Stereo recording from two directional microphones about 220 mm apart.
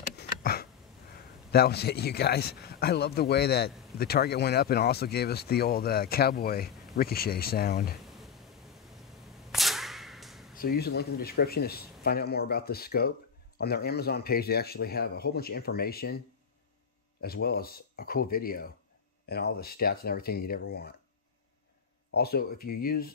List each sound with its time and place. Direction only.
0.1 s a sound: 45° left (ahead or behind)
1.1 s a man's voice: 45° left (ahead or behind)
9.5 s whip: centre (ahead or behind)
10.5 s a man's voice: 40° left (ahead or behind)
17.2 s a man's voice: 45° left (ahead or behind)
22.1 s a man's voice: 45° left (ahead or behind)